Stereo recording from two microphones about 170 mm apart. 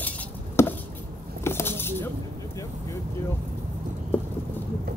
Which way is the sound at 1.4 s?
15° left (ahead or behind).